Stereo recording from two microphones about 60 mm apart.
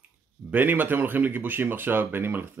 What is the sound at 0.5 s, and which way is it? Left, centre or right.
Speech, right.